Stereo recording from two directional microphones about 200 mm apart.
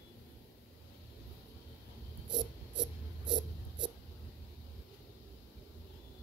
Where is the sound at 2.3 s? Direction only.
20° right (ahead or behind).